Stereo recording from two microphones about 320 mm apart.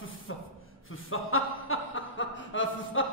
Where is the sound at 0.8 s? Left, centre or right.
Left.